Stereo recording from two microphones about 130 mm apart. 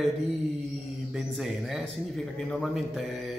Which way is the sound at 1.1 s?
Centre (ahead or behind).